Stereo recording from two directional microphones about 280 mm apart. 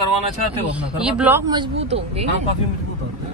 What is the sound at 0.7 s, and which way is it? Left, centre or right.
Speech, centre.